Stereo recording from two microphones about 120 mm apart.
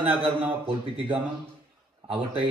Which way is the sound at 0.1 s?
45° right (ahead or behind).